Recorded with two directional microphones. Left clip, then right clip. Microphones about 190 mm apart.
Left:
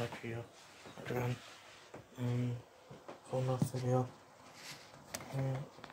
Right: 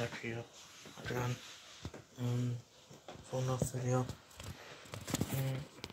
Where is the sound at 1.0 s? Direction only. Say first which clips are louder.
Even; 10° left (ahead or behind).